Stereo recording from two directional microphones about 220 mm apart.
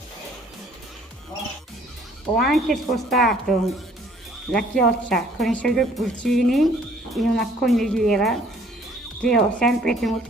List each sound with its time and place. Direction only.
2.3 s speech: centre (ahead or behind)